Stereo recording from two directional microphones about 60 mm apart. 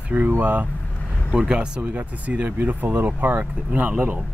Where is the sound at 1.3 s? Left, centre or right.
Centre.